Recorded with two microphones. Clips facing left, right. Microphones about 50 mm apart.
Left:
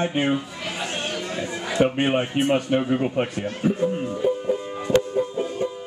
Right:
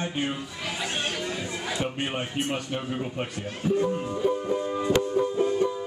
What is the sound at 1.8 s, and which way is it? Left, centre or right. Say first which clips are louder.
A man's voice: left 13 dB; left.